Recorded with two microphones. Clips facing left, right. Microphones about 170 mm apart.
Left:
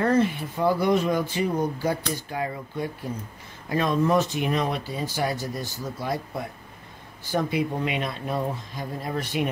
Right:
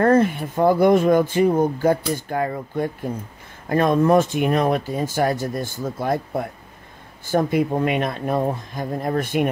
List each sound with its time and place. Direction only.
0.0 s speech: 50° right (ahead or behind)